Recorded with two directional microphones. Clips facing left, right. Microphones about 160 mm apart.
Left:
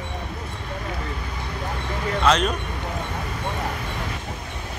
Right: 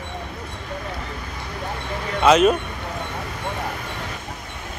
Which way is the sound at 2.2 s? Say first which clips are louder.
Right 6 dB; 5° right (ahead or behind).